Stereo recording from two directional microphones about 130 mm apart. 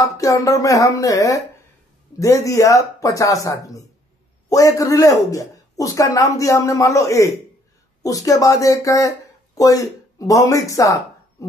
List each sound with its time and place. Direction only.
0.0 s a man's voice: 25° left (ahead or behind)